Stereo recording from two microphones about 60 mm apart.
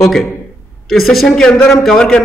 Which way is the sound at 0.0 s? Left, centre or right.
Centre.